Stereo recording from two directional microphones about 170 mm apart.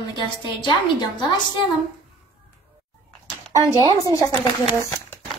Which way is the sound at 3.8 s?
25° right (ahead or behind).